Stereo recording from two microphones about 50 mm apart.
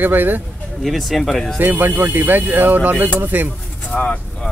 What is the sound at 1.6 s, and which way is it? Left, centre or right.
Speech, right.